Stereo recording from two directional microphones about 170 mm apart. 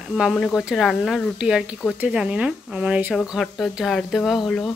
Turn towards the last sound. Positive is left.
turn(degrees=0)  # may be behind; listen again after turning